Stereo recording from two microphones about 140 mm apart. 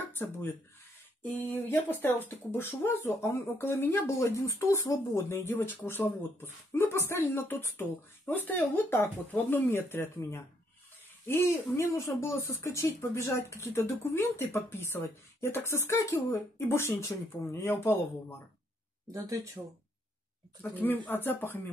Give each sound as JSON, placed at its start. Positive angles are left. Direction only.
{"t": 0.2, "sound": "speech", "side_deg": 15}
{"t": 1.7, "sound": "speech", "side_deg": 15}
{"t": 19.1, "sound": "speech", "side_deg": -25}
{"t": 20.7, "sound": "speech", "side_deg": 15}